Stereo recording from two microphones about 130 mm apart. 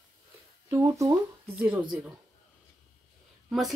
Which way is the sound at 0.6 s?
20° right (ahead or behind).